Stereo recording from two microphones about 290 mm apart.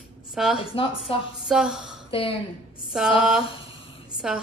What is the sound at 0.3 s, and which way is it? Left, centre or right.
Speech, centre.